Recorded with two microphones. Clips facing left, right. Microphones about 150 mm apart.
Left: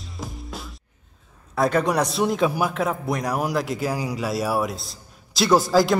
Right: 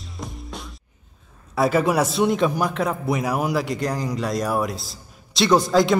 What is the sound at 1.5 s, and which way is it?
A man's voice, 5° right (ahead or behind).